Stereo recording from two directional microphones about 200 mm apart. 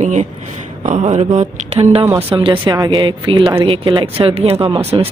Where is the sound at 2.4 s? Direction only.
25° right (ahead or behind).